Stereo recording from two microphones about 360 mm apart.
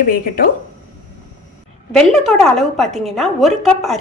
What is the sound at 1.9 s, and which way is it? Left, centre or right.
A woman's voice, centre.